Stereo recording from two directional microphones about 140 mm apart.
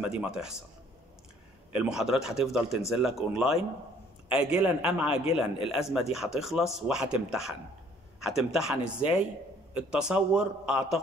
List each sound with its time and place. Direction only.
0.0 s a man's voice: 10° right (ahead or behind)
1.7 s a man's voice: 5° right (ahead or behind)
5.0 s a man's voice: 45° left (ahead or behind)
6.1 s a man's voice: 5° right (ahead or behind)